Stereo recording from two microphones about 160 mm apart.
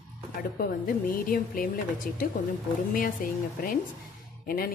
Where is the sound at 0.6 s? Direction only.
60° left (ahead or behind).